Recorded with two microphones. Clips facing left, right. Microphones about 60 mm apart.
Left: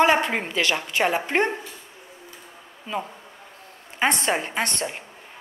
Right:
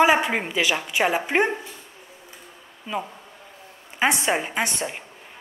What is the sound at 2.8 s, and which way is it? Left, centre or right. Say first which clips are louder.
A woman's voice: even; centre.